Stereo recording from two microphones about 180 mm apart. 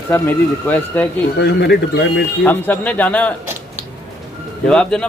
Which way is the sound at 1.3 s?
70° left (ahead or behind).